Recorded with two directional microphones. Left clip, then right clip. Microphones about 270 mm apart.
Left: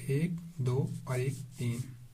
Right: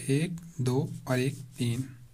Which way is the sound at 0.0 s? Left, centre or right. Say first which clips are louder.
Right 5 dB; right.